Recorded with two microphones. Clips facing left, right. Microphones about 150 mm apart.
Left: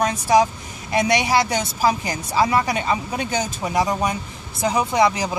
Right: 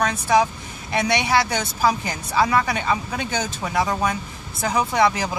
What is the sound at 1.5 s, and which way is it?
A woman's voice, 25° left (ahead or behind).